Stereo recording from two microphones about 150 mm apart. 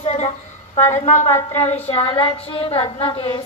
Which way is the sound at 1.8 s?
40° left (ahead or behind).